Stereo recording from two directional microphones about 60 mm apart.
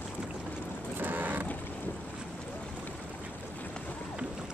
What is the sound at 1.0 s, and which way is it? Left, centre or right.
Vehicle, right.